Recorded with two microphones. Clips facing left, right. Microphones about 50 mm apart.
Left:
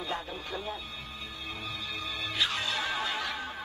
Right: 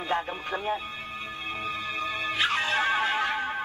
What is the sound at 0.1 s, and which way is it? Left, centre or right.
Speech, right.